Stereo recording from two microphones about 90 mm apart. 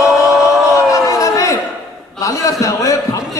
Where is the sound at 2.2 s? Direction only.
40° left (ahead or behind).